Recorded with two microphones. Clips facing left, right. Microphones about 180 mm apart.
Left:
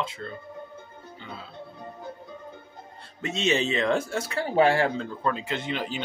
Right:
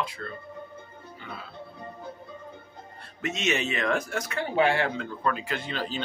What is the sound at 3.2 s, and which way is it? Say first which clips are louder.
Speech: left 3 dB; 30° left (ahead or behind).